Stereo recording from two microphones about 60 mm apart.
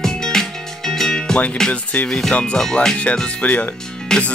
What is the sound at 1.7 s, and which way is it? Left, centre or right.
Speech, left.